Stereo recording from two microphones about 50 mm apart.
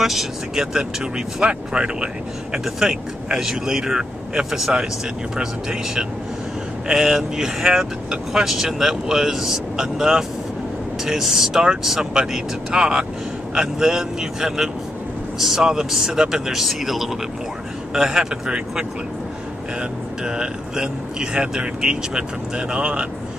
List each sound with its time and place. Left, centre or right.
0.0 s speech: centre
0.7 s speech: centre